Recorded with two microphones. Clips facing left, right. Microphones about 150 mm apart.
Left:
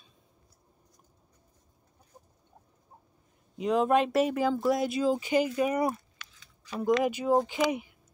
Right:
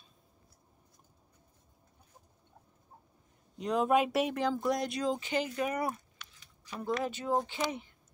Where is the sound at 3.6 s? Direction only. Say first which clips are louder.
Left 3 dB; centre (ahead or behind).